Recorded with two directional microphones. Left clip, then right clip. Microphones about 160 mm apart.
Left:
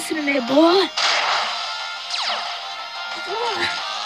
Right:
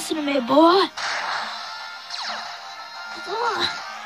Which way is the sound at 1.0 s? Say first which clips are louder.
Left 7 dB; 45° left (ahead or behind).